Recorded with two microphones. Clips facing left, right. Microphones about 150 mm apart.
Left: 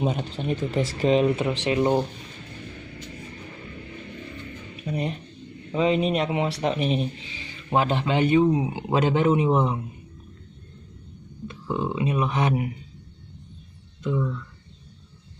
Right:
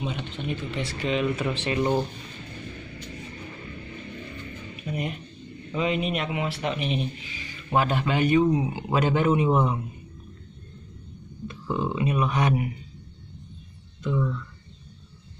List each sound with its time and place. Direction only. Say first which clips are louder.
0.0 s speech: left 5 dB; 40° left (ahead or behind)
1.3 s speech: left 3 dB; 20° left (ahead or behind)
4.9 s speech: left 3 dB; 35° left (ahead or behind)
11.6 s speech: left 1 dB; 10° left (ahead or behind)